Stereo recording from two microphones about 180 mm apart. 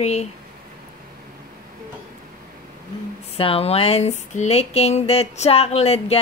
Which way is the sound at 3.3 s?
30° left (ahead or behind).